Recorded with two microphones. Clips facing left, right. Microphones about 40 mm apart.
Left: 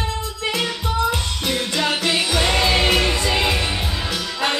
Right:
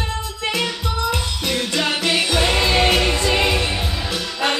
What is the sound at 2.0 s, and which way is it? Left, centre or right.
Music, right.